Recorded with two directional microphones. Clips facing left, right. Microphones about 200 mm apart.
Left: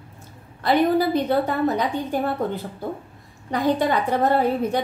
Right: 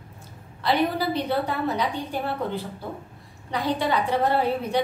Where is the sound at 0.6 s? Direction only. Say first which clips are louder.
Left 5 dB; 45° left (ahead or behind).